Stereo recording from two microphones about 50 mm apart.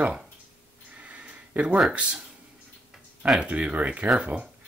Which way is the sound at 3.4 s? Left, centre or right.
Right.